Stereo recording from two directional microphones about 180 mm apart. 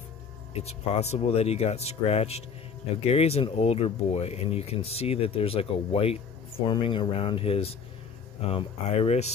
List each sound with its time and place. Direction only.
0.6 s speech: 35° left (ahead or behind)